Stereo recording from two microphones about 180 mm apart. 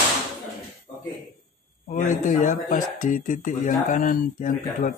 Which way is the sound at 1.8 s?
40° left (ahead or behind).